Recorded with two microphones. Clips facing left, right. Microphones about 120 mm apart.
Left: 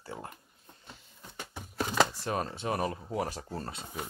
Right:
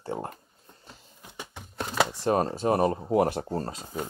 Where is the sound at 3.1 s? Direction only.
55° right (ahead or behind).